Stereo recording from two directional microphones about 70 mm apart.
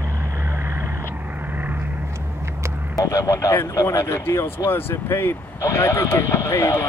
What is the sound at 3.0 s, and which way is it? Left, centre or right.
Speech, left.